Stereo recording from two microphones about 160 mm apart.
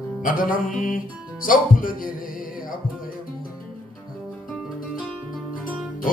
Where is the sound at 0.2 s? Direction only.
60° left (ahead or behind).